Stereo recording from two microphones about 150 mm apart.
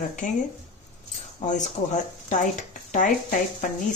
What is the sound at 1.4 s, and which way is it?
Speech, 55° left (ahead or behind).